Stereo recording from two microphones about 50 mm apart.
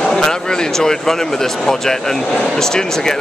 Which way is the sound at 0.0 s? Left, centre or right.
Centre.